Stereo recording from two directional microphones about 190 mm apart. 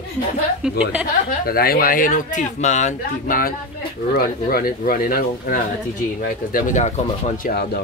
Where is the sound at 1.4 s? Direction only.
50° left (ahead or behind).